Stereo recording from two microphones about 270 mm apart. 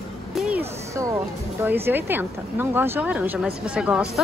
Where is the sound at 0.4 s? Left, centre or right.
Centre.